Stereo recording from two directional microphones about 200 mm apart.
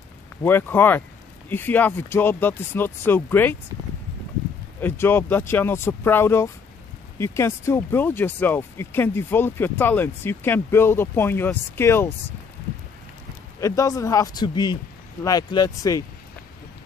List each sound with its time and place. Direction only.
0.4 s speech: 10° left (ahead or behind)
4.7 s speech: 10° left (ahead or behind)
13.6 s speech: 15° left (ahead or behind)